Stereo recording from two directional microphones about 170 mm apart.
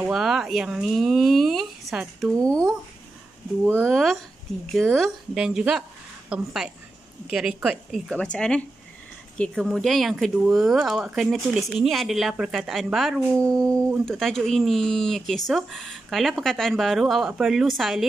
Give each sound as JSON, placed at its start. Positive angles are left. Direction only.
{"t": 0.0, "sound": "speech", "side_deg": 0}
{"t": 2.3, "sound": "speech", "side_deg": -20}
{"t": 3.6, "sound": "speech", "side_deg": -15}
{"t": 3.9, "sound": "speech", "side_deg": 0}
{"t": 13.7, "sound": "speech", "side_deg": -15}
{"t": 14.0, "sound": "speech", "side_deg": 0}